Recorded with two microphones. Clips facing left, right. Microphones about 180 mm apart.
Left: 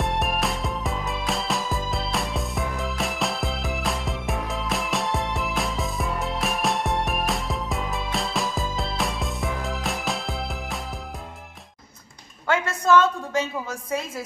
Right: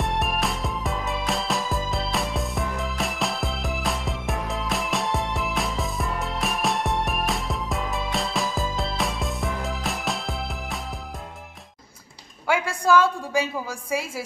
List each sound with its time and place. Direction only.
0.0 s music: centre (ahead or behind)
12.4 s a woman's voice: 10° right (ahead or behind)